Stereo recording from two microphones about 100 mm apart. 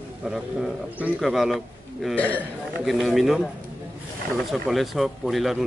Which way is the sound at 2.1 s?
15° left (ahead or behind).